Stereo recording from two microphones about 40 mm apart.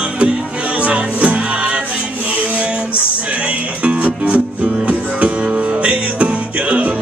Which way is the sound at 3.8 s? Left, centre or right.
Right.